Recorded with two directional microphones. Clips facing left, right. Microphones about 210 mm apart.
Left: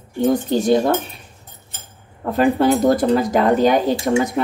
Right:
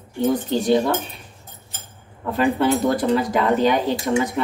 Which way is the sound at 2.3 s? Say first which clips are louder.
Left 3 dB; 40° left (ahead or behind).